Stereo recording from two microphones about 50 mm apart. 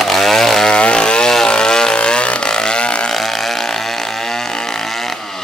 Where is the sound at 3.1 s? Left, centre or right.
Centre.